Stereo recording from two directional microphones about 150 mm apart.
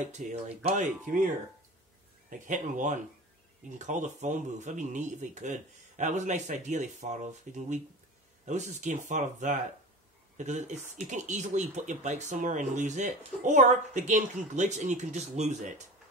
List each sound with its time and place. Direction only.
0.0 s speech: 50° right (ahead or behind)